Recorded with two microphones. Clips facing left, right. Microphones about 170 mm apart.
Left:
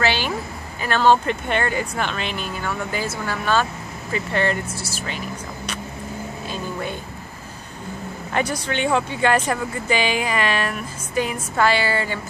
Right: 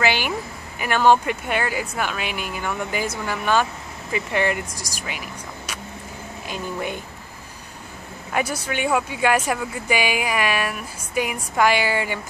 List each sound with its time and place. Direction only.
0.0 s a sound: 15° right (ahead or behind)
0.7 s speech: 15° right (ahead or behind)
8.3 s speech: 10° right (ahead or behind)